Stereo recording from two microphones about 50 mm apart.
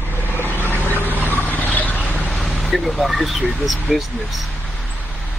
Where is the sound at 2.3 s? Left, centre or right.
Centre.